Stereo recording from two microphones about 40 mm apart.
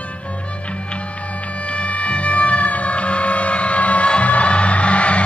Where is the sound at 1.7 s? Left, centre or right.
Left.